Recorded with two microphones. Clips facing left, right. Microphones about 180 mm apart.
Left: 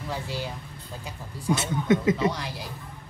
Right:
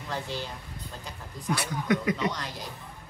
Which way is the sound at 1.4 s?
25° left (ahead or behind).